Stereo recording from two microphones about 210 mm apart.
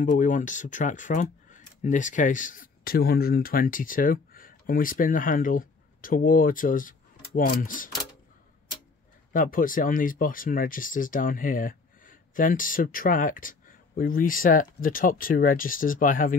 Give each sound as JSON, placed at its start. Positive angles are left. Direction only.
{"t": 0.0, "sound": "speech", "side_deg": 40}
{"t": 9.3, "sound": "speech", "side_deg": 40}